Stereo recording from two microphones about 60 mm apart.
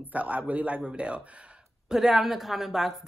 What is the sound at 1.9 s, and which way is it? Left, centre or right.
Speech, centre.